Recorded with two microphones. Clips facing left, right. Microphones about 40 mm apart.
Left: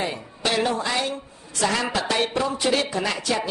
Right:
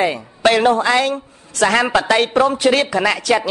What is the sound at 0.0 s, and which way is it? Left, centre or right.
A man's voice, right.